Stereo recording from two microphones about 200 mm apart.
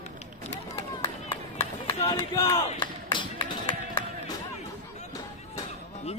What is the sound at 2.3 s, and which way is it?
Battle cry, 15° left (ahead or behind).